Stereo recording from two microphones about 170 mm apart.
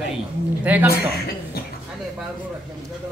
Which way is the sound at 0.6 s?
10° right (ahead or behind).